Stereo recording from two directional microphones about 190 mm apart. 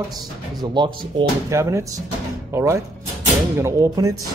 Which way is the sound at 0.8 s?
25° right (ahead or behind).